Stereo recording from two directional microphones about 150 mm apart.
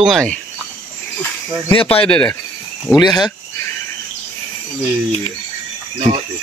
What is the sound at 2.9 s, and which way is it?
Speech, 30° left (ahead or behind).